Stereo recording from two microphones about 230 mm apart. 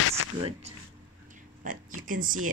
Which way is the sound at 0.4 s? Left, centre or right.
Right.